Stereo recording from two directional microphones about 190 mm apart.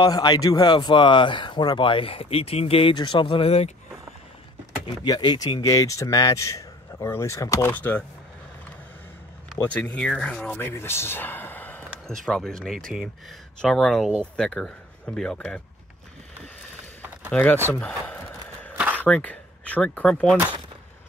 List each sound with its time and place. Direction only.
0.0 s speech: 20° left (ahead or behind)
4.8 s speech: 20° left (ahead or behind)
9.6 s speech: 10° left (ahead or behind)
17.3 s speech: 10° left (ahead or behind)
17.7 s a sound: 5° left (ahead or behind)
18.8 s a sound: 10° right (ahead or behind)
19.0 s speech: 5° left (ahead or behind)